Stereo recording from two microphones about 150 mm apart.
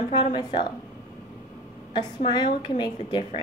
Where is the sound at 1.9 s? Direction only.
30° left (ahead or behind).